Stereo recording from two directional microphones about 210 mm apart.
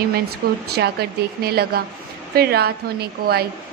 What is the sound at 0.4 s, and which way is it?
Speech, 45° right (ahead or behind).